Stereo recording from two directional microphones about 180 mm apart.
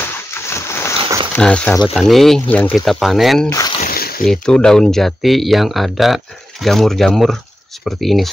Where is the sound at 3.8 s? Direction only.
55° left (ahead or behind).